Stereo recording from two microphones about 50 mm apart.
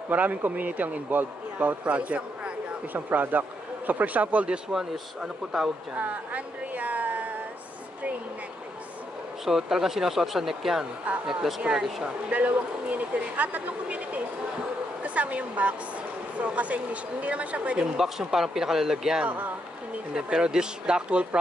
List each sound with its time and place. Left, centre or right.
0.1 s a man's voice: right
4.7 s speech: centre
5.9 s speech: right
9.4 s speech: centre
12.0 s speech: right
17.9 s speech: centre
19.2 s speech: right
20.2 s speech: centre